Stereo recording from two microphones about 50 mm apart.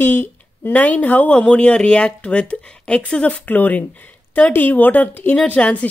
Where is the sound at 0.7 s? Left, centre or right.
Left.